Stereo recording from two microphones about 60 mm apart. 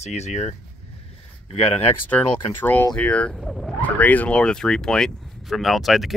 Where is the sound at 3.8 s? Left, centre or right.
Left.